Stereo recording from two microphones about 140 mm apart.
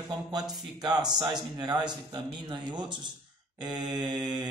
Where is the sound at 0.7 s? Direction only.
30° right (ahead or behind).